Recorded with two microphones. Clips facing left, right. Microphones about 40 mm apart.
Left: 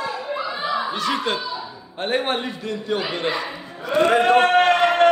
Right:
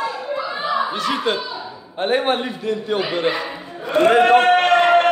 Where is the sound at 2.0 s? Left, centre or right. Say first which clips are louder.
Right 4 dB; centre.